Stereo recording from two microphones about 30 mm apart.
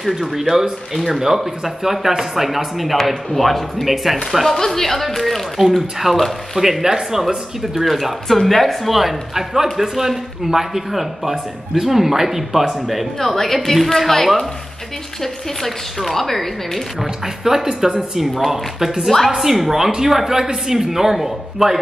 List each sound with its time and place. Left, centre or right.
0.1 s a man's voice: centre
4.6 s a woman's voice: centre
5.8 s a man's voice: centre
8.4 s a woman's voice: centre
8.8 s a man's voice: centre
13.2 s a woman's voice: centre
15.6 s speech: centre
17.6 s a man's voice: centre
18.2 s a man's voice: centre